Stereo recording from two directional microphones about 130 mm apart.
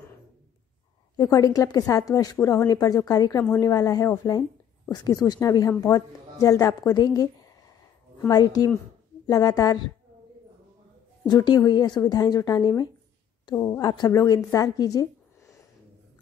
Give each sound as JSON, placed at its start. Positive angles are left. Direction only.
{"t": 1.1, "sound": "a woman's voice", "side_deg": 25}
{"t": 11.2, "sound": "a woman's voice", "side_deg": 35}